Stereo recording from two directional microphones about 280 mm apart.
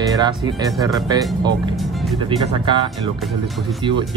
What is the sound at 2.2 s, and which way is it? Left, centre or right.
Speech, centre.